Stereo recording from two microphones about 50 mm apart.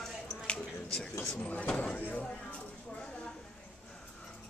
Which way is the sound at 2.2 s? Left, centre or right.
Left.